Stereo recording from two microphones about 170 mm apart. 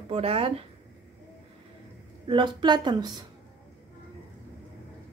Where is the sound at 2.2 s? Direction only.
25° right (ahead or behind).